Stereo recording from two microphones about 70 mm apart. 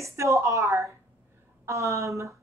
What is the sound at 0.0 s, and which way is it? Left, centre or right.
A woman's voice, right.